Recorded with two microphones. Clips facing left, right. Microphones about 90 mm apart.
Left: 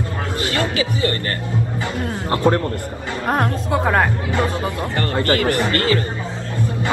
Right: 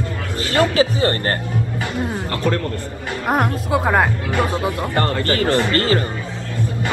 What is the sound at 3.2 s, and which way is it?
Speech, 15° right (ahead or behind).